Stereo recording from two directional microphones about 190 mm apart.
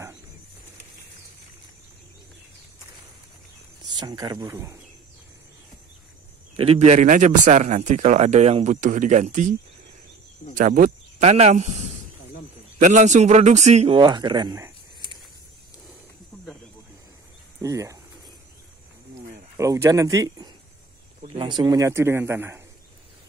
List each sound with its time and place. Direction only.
3.9 s speech: 20° right (ahead or behind)
6.5 s a man's voice: 30° right (ahead or behind)
13.9 s speech: 25° right (ahead or behind)
17.6 s speech: 15° right (ahead or behind)
19.5 s a man's voice: 15° right (ahead or behind)
21.2 s a man's voice: 30° right (ahead or behind); by 22.6 s 10° right (ahead or behind)